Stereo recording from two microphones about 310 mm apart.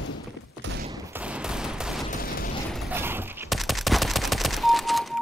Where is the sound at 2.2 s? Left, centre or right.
Left.